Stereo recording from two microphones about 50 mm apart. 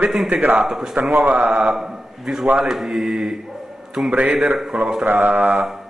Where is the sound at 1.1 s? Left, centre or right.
Right.